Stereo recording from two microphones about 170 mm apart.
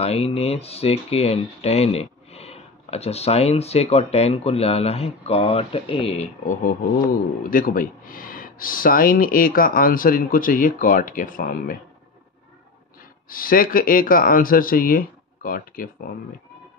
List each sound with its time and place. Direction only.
0.0 s speech: 35° left (ahead or behind); by 11.8 s 55° left (ahead or behind)
13.3 s speech: 55° left (ahead or behind)